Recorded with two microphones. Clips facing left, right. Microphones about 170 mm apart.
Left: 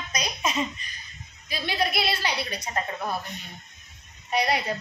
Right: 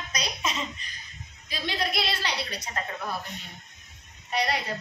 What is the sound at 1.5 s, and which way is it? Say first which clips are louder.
A woman's voice: left 3 dB; 10° left (ahead or behind).